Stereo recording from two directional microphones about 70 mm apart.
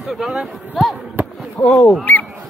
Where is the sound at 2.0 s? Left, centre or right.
Left.